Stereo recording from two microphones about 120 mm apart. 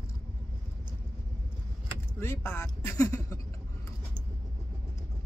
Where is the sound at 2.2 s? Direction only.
20° left (ahead or behind).